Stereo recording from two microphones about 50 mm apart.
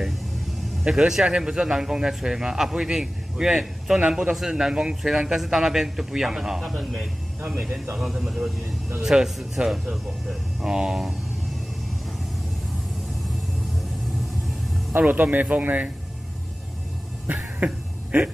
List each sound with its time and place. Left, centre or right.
0.8 s speech: centre
15.0 s speech: right
17.3 s a sound: right